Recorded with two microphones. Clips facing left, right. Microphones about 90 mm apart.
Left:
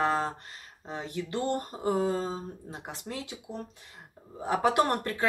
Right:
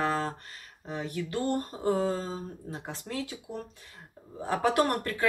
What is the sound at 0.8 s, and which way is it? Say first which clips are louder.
Speech: right 1 dB; 25° left (ahead or behind).